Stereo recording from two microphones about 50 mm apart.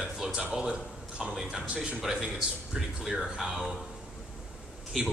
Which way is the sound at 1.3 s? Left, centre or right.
Centre.